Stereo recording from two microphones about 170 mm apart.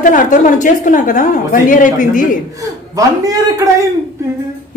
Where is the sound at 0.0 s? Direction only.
50° left (ahead or behind).